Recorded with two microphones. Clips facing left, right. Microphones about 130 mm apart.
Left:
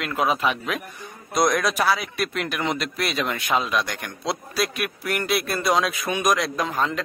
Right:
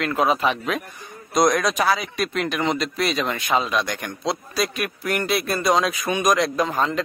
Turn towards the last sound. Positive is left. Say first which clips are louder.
# right 3 dB
turn(degrees=0)  # may be behind; listen again after turning